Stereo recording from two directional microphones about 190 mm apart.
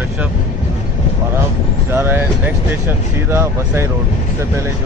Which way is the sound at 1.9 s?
10° right (ahead or behind).